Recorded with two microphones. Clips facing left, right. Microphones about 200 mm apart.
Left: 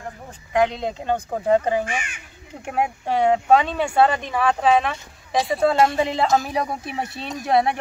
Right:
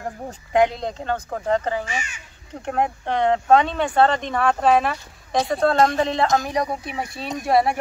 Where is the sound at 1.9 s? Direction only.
55° left (ahead or behind).